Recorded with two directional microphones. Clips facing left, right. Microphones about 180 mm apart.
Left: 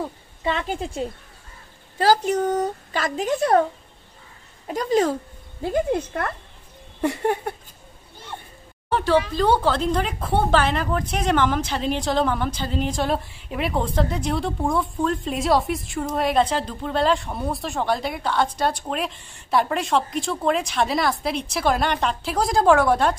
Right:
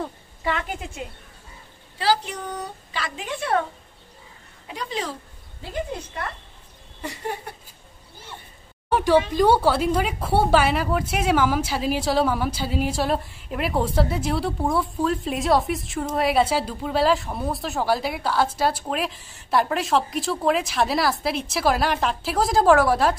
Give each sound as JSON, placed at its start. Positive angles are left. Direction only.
{"t": 0.4, "sound": "a woman's voice", "side_deg": 25}
{"t": 2.0, "sound": "a woman's voice", "side_deg": 45}
{"t": 4.6, "sound": "a woman's voice", "side_deg": 45}
{"t": 8.9, "sound": "a woman's voice", "side_deg": -15}